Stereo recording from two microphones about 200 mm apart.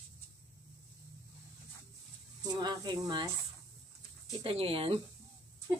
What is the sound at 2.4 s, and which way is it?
Speech, 20° right (ahead or behind).